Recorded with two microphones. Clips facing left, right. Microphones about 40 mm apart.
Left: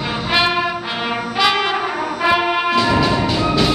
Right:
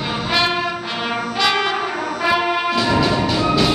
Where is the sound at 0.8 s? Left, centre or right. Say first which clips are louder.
Left 1 dB; centre.